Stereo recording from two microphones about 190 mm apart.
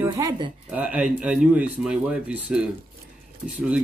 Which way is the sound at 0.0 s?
20° right (ahead or behind).